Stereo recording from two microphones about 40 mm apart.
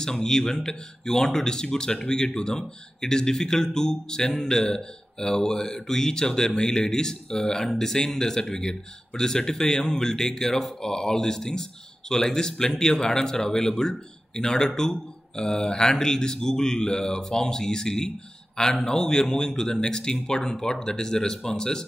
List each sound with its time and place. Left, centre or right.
0.0 s speech: centre